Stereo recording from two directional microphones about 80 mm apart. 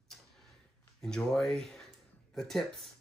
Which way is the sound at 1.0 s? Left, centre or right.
Centre.